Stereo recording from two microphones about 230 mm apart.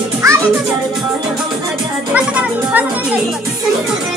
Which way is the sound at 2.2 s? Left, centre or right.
Centre.